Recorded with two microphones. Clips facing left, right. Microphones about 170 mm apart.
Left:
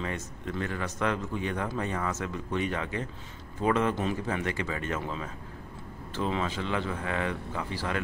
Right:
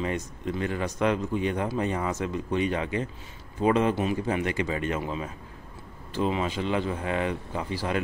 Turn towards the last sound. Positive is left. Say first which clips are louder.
# right 3 dB
turn(degrees=-20)  # may be behind; listen again after turning